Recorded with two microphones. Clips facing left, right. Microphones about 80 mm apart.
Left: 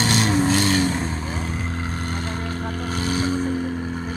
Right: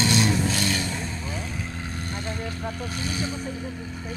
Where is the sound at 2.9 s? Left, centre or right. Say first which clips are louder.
Left 7 dB; left.